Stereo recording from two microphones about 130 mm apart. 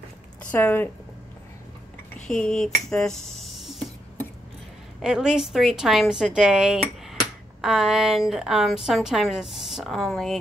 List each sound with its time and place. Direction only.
0.5 s speech: 15° left (ahead or behind)
2.2 s a woman's voice: 5° left (ahead or behind)
3.3 s a sound: centre (ahead or behind)
5.0 s a woman's voice: 5° right (ahead or behind)